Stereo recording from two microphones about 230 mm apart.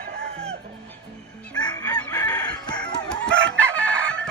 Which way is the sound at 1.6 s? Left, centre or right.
Centre.